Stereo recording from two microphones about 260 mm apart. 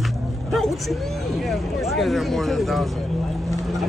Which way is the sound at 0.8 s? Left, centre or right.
Centre.